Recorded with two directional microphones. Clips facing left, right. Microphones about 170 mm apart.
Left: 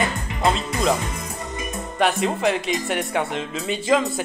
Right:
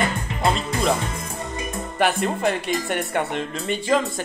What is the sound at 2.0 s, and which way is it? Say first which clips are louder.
Music: left 1 dB; centre (ahead or behind).